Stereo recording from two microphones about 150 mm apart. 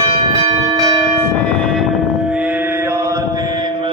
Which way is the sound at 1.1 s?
5° left (ahead or behind).